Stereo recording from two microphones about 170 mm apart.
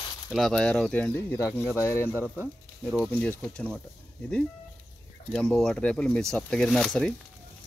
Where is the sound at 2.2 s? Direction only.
5° left (ahead or behind).